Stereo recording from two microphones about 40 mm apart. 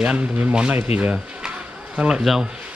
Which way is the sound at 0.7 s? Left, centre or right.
Right.